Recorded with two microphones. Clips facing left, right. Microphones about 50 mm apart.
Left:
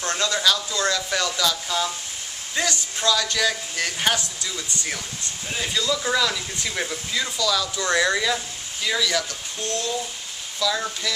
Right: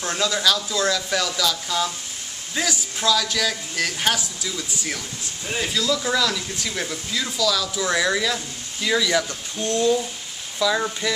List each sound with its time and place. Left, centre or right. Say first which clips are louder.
0.0 s speech: right 1 dB; centre
8.8 s speech: right 3 dB; centre
9.6 s a sound: right 6 dB; right
10.6 s speech: right 3 dB; centre